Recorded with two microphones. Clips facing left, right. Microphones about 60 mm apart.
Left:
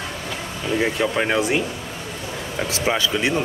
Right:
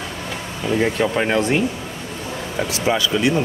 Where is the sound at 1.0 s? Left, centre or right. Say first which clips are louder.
Right 2 dB; centre.